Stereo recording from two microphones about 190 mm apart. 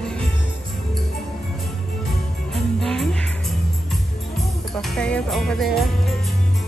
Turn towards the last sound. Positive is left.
turn(degrees=0)  # may be behind; listen again after turning